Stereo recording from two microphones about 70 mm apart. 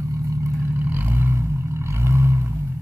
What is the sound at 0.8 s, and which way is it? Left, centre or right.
Vehicle, right.